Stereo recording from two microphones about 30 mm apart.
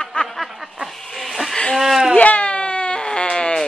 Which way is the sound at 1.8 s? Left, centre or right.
Centre.